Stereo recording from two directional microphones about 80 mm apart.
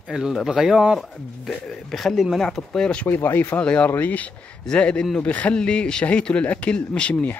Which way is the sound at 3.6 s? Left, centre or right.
Centre.